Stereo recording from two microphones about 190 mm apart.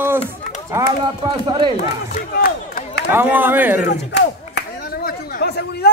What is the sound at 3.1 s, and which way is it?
Speech, 10° right (ahead or behind).